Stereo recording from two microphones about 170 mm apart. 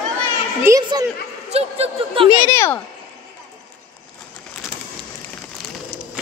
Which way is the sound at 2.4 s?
15° left (ahead or behind).